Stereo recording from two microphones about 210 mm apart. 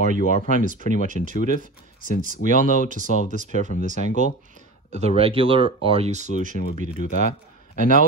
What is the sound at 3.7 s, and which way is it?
Speech, 40° left (ahead or behind).